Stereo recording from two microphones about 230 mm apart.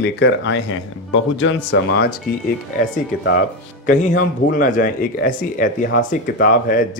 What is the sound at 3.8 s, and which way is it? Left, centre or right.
Speech, left.